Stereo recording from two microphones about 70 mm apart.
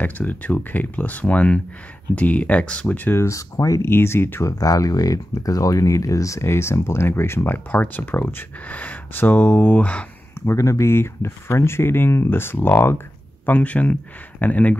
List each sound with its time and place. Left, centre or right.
0.0 s speech: left
3.2 s speech: left
3.8 s speech: left
4.5 s speech: left
10.4 s speech: left